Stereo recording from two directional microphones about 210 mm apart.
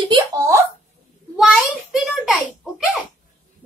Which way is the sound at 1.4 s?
Centre (ahead or behind).